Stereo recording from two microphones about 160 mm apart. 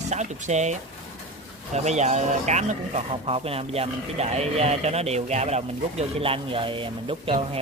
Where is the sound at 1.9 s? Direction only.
45° right (ahead or behind).